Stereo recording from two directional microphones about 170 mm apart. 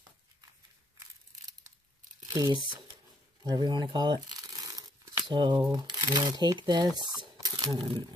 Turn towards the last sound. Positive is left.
turn(degrees=-25)  # may be behind; listen again after turning